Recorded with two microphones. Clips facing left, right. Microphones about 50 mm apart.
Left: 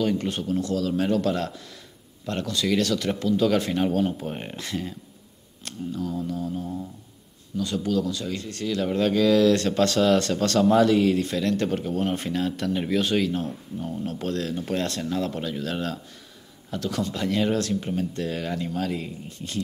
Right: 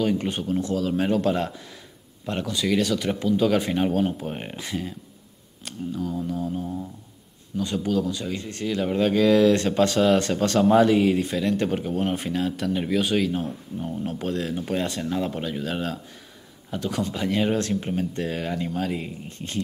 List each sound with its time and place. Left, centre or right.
0.0 s speech: centre
19.2 s speech: right